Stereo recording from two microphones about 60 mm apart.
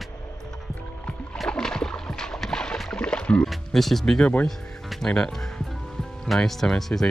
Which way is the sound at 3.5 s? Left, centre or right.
Centre.